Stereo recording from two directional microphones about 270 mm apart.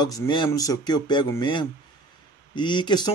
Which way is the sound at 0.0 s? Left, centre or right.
Centre.